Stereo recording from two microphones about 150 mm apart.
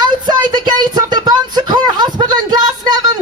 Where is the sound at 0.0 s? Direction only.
30° right (ahead or behind).